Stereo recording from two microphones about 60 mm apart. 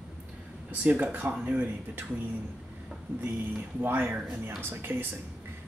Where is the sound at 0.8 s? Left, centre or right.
Right.